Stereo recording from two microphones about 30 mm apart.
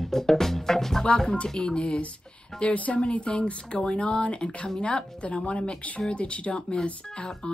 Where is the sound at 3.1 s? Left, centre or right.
Left.